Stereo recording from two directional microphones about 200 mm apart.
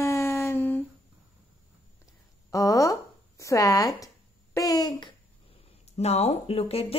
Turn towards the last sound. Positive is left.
turn(degrees=30)  # may be behind; listen again after turning